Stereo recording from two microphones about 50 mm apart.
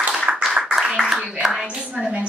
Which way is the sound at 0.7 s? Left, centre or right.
Centre.